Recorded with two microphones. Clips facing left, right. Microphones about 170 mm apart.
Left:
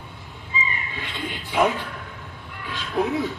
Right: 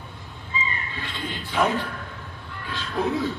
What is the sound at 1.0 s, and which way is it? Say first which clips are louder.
Speech: even; 15° left (ahead or behind).